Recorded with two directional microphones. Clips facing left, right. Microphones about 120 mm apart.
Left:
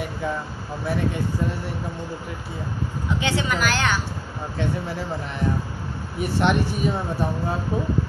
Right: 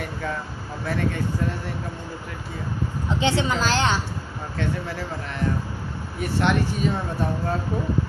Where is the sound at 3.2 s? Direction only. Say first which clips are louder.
Right 2 dB; 25° right (ahead or behind).